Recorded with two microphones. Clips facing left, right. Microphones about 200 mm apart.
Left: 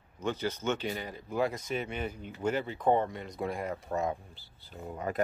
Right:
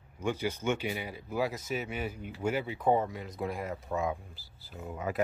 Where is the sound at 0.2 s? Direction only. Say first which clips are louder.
Right 1 dB; 10° right (ahead or behind).